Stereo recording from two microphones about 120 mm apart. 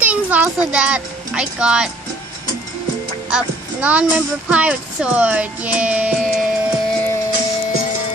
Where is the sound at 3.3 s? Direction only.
10° right (ahead or behind).